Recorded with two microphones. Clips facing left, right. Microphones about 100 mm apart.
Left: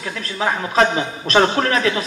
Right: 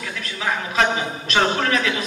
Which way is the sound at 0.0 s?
35° left (ahead or behind).